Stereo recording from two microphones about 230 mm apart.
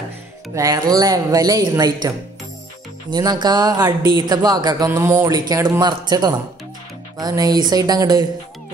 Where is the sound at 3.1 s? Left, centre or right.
Centre.